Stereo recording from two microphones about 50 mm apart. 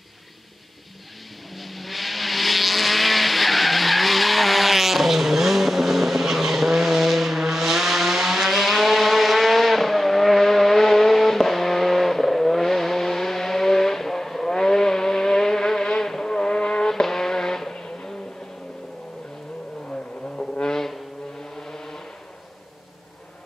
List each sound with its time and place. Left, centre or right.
1.6 s vehicle: centre
19.9 s vehicle: centre
21.5 s a sound: centre